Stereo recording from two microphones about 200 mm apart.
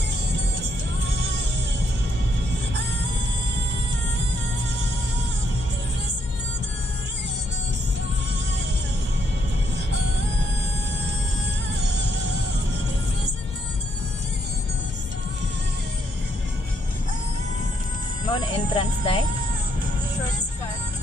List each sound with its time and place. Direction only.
18.3 s music: 20° left (ahead or behind)